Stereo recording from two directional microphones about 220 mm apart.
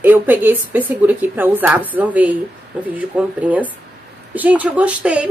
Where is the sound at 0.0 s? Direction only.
10° right (ahead or behind).